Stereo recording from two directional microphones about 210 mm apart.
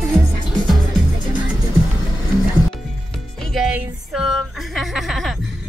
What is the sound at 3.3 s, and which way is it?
Music, centre (ahead or behind).